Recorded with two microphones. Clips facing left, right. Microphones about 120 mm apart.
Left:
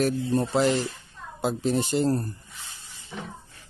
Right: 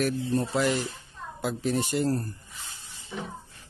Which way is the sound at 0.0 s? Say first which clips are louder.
Left 3 dB; 30° left (ahead or behind).